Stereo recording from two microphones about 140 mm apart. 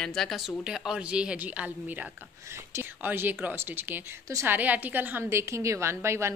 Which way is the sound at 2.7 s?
15° right (ahead or behind).